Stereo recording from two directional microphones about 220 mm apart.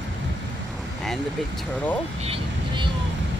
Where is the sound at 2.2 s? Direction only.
25° right (ahead or behind).